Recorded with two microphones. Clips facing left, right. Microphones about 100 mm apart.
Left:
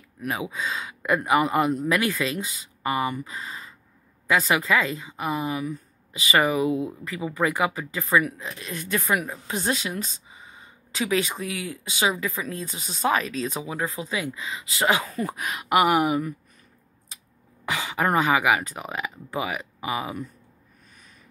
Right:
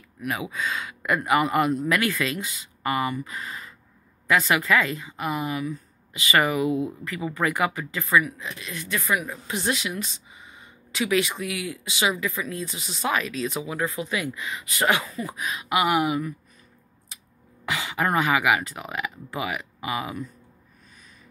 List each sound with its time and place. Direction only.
0.3 s speech: 25° left (ahead or behind)
8.2 s speech: 50° left (ahead or behind)
8.5 s speech: 40° left (ahead or behind)
13.6 s speech: 25° left (ahead or behind)
15.0 s speech: 50° left (ahead or behind)
17.7 s speech: 20° left (ahead or behind)